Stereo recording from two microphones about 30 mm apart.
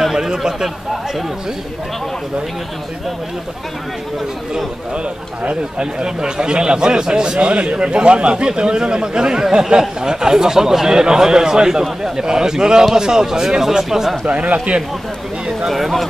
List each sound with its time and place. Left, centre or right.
0.4 s a man's voice: right
5.8 s a man's voice: right
7.3 s a man's voice: right; by 14.1 s centre
14.2 s speech: right
15.7 s speech: centre